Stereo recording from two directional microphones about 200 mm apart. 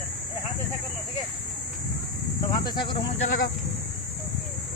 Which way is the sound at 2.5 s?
20° left (ahead or behind).